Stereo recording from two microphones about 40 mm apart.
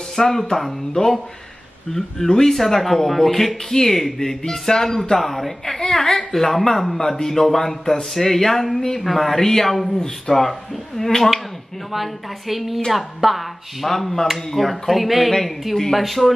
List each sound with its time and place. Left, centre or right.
0.1 s speech: centre
11.9 s speech: centre